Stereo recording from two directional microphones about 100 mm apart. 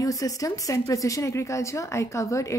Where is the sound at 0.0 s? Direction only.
35° left (ahead or behind).